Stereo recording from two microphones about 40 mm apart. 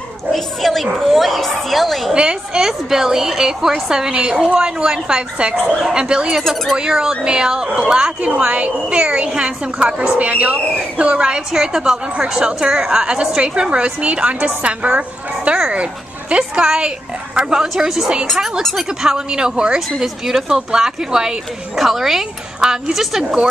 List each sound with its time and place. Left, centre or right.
0.3 s a woman's voice: centre
2.1 s a woman's voice: right
2.6 s a woman's voice: centre
4.1 s a woman's voice: right; by 18.9 s centre
18.9 s a woman's voice: centre
20.0 s a woman's voice: centre